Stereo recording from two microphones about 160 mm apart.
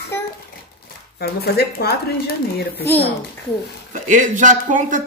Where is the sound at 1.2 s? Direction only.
90° left.